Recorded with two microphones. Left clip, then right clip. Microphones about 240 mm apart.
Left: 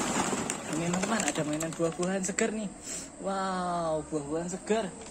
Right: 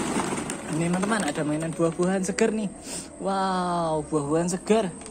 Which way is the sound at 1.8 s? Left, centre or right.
Centre.